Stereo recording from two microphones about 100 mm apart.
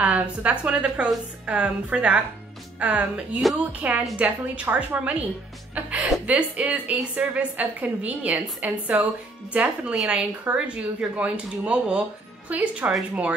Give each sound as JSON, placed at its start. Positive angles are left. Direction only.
{"t": 0.0, "sound": "a woman's voice", "side_deg": -15}